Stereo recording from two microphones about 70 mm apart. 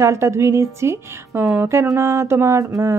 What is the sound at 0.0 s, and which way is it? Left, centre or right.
Speech, right.